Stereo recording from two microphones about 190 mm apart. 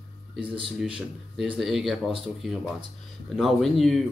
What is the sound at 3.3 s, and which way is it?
Speech, centre (ahead or behind).